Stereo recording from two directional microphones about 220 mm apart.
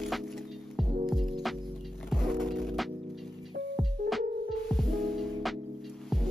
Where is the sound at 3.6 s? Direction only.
55° right (ahead or behind).